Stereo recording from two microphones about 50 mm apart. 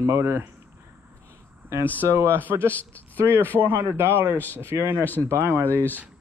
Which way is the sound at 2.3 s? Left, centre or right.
Right.